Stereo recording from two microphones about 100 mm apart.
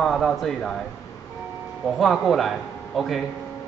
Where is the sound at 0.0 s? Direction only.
Centre (ahead or behind).